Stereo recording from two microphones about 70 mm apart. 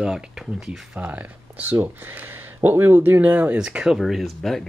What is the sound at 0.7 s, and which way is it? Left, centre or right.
Speech, centre.